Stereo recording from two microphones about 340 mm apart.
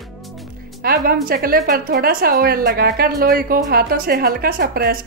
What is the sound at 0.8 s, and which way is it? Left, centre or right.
Music, right.